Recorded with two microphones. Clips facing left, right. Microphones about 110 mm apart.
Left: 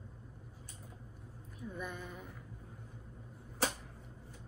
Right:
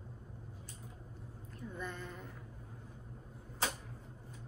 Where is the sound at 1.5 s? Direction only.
10° left (ahead or behind).